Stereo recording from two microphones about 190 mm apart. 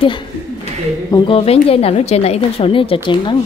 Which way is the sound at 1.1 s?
30° left (ahead or behind).